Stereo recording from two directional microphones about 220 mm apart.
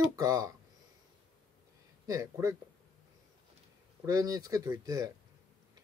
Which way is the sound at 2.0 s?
15° right (ahead or behind).